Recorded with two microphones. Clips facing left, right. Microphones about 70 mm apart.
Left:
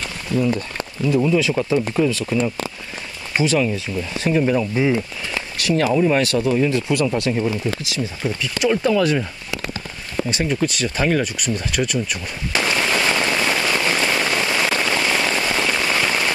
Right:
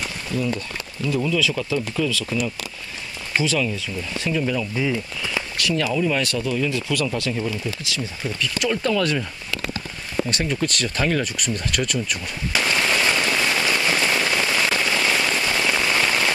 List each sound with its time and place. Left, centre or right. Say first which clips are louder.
1.0 s speech: left 5 dB; left; by 12.2 s centre
12.5 s rain: left 1 dB; centre
15.7 s rain on surface: left 1 dB; centre